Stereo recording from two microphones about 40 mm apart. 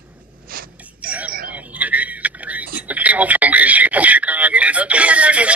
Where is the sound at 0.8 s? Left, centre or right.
Right.